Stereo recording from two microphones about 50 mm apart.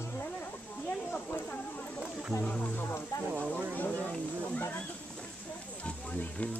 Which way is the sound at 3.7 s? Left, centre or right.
Left.